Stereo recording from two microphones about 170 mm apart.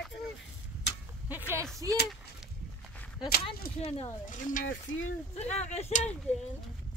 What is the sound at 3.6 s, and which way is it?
Speech, 60° left (ahead or behind).